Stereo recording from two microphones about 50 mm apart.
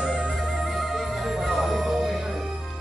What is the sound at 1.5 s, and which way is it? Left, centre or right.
Music, centre.